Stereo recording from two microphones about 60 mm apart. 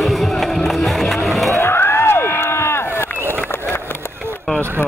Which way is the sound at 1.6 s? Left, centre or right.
Left.